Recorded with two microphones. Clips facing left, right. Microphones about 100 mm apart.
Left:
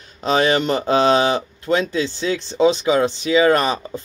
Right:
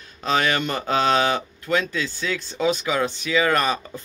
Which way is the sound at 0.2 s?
25° left (ahead or behind).